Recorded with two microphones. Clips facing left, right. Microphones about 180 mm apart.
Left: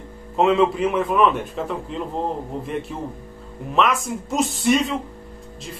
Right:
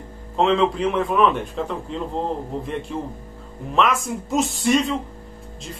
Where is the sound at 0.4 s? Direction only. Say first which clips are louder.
Left 1 dB; 5° left (ahead or behind).